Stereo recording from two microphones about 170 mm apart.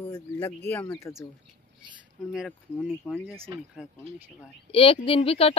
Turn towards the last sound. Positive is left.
turn(degrees=35)  # may be behind; listen again after turning